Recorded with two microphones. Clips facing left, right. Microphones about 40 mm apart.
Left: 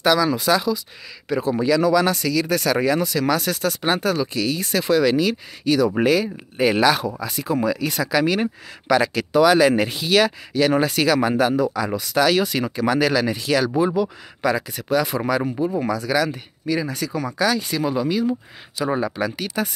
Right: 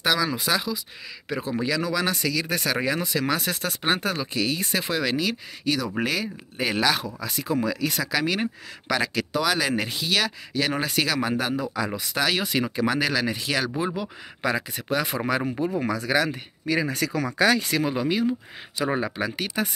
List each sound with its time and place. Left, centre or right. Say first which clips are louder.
0.0 s speech: left 6 dB; centre
5.1 s speech: left 6 dB; centre
10.5 s speech: left 5 dB; centre
13.4 s speech: left 6 dB; centre
14.4 s speech: left 4 dB; right
16.6 s speech: left 1 dB; right
18.8 s speech: left 3 dB; right